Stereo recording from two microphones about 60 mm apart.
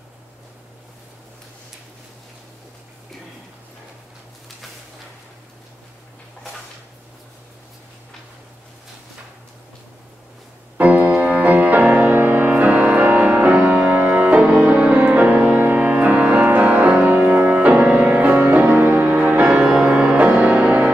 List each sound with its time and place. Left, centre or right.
10.8 s music: right
19.6 s music: centre